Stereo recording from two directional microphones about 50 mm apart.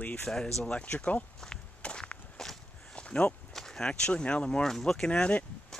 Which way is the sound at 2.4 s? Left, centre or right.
Centre.